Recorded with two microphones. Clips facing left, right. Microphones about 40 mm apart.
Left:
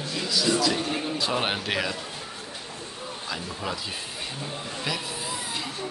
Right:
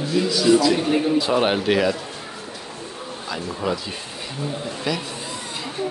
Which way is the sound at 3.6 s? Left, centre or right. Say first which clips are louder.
Right 8 dB; centre.